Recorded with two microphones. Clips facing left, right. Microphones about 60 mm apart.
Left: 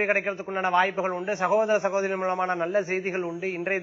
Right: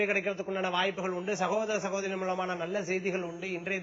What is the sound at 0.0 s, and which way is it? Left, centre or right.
A man's voice, left.